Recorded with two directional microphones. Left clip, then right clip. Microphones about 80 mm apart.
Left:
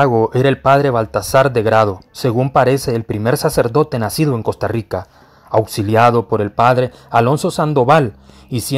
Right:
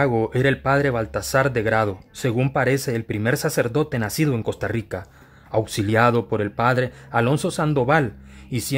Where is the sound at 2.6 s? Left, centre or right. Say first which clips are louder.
Left 7 dB; left.